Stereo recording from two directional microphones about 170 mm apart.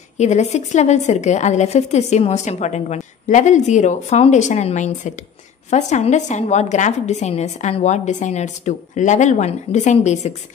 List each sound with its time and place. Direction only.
0.2 s a woman's voice: 40° left (ahead or behind)